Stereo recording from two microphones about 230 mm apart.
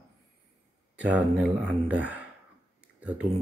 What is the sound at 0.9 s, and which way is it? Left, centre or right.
Speech, centre.